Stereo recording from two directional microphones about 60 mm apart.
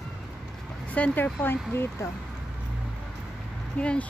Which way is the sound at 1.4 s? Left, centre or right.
Left.